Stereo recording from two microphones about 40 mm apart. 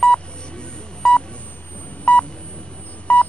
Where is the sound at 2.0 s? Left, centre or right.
Left.